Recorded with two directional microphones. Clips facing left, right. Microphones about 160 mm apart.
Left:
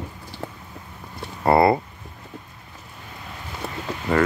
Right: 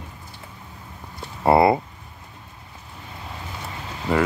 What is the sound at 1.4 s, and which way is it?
Speech, 15° right (ahead or behind).